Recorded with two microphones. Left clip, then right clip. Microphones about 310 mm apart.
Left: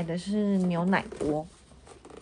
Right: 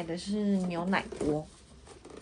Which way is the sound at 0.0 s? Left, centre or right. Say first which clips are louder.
Left 3 dB; left.